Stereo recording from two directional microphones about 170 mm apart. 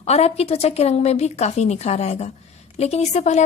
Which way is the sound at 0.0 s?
40° left (ahead or behind).